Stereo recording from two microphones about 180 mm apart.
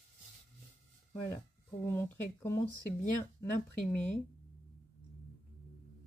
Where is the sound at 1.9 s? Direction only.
15° left (ahead or behind).